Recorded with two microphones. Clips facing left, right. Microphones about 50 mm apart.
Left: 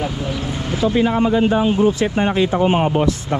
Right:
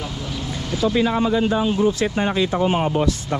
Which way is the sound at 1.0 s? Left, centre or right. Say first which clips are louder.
Left 3 dB; left.